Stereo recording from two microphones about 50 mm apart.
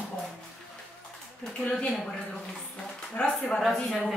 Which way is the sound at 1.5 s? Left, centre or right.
Centre.